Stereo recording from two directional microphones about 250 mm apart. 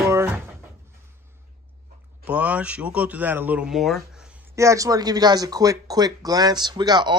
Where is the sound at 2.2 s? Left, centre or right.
Centre.